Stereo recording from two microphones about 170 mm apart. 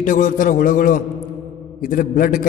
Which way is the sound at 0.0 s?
50° left (ahead or behind).